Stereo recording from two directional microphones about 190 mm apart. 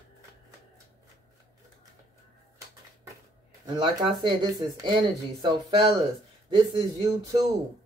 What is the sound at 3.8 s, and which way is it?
Speech, 20° right (ahead or behind).